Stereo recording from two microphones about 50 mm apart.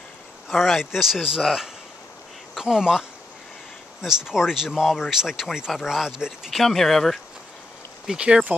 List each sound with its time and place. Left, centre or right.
0.5 s speech: centre
6.5 s speech: centre
8.2 s speech: right